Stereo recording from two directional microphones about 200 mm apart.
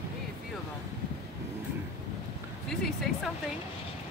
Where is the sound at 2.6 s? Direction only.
Centre (ahead or behind).